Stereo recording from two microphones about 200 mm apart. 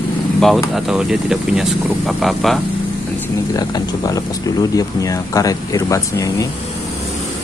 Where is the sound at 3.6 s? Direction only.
20° left (ahead or behind).